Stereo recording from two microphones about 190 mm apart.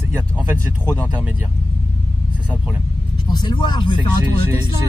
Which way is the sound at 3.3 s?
25° left (ahead or behind).